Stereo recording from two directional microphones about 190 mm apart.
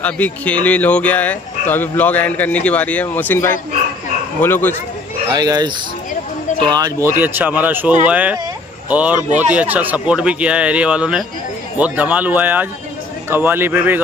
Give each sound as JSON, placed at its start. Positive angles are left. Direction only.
{"t": 0.0, "sound": "speech", "side_deg": 5}
{"t": 5.3, "sound": "speech", "side_deg": -20}
{"t": 6.7, "sound": "speech", "side_deg": -15}